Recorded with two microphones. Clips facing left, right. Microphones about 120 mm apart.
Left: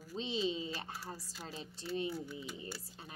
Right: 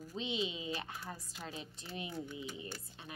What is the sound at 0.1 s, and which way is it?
Speech, 35° left (ahead or behind).